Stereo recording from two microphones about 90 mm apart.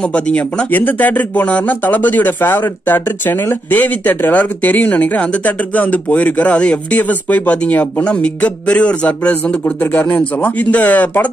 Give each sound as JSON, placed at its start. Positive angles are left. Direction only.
{"t": 0.1, "sound": "speech", "side_deg": 15}